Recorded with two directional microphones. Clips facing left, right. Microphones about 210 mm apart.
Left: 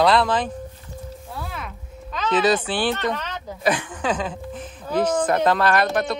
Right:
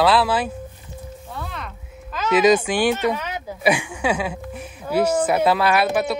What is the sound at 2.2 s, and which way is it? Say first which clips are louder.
A woman's voice: right 4 dB; 10° right (ahead or behind).